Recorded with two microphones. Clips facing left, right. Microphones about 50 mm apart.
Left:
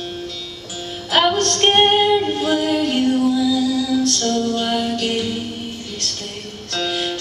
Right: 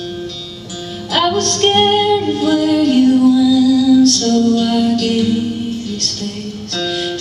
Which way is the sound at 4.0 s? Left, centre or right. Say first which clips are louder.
Right 8 dB; centre.